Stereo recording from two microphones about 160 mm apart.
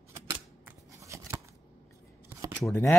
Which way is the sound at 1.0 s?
20° right (ahead or behind).